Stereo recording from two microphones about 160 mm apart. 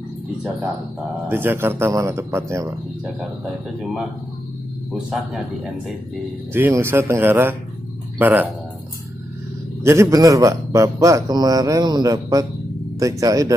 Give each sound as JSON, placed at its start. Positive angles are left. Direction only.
{"t": 1.3, "sound": "speech", "side_deg": -15}
{"t": 4.9, "sound": "speech", "side_deg": 0}
{"t": 6.5, "sound": "speech", "side_deg": -15}
{"t": 9.8, "sound": "a man's voice", "side_deg": -20}